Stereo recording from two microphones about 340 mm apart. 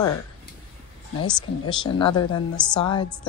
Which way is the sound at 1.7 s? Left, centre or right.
Centre.